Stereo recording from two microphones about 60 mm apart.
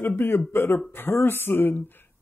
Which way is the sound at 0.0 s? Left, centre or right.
Left.